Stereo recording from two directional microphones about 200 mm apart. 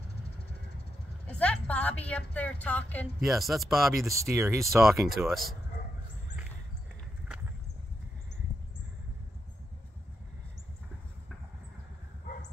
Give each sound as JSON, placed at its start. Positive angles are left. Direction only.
{"t": 1.2, "sound": "a woman's voice", "side_deg": 5}
{"t": 4.1, "sound": "speech", "side_deg": -15}
{"t": 4.6, "sound": "speech", "side_deg": 0}